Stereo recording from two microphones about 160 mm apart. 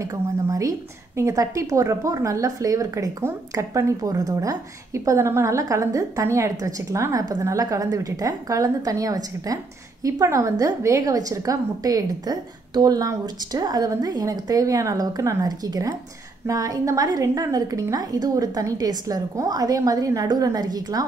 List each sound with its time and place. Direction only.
0.0 s a woman's voice: 20° right (ahead or behind)